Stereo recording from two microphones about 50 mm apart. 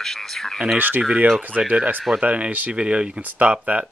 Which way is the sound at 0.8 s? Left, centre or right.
Right.